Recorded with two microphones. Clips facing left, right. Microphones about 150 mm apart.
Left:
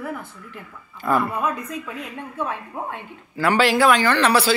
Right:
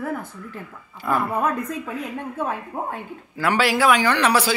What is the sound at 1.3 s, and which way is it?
A woman's voice, 55° right (ahead or behind).